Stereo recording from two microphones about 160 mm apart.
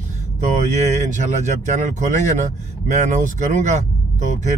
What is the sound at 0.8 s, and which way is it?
Speech, 50° right (ahead or behind).